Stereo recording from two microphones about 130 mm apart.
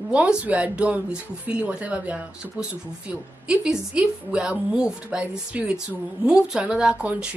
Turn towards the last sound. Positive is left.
turn(degrees=-10)  # may be behind; listen again after turning